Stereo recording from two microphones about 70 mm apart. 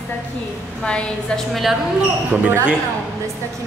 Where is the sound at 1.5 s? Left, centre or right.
Centre.